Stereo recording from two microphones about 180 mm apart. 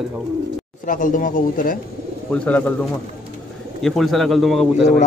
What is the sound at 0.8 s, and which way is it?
Speech, 50° left (ahead or behind).